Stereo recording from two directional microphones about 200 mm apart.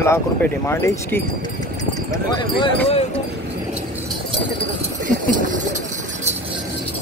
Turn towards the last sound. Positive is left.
turn(degrees=-40)  # may be behind; listen again after turning